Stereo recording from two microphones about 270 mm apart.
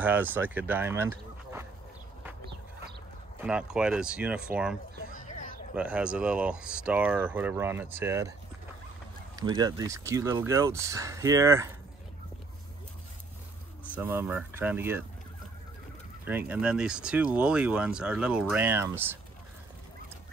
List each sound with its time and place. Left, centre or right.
0.0 s speech: centre
3.3 s speech: centre
5.0 s a sound: left
5.8 s speech: centre
9.4 s speech: centre
13.9 s speech: centre
16.3 s speech: centre